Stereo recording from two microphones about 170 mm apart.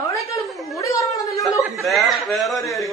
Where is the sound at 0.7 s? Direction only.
20° left (ahead or behind).